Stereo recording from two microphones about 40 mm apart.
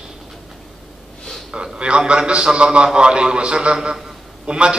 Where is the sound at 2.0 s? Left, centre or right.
Right.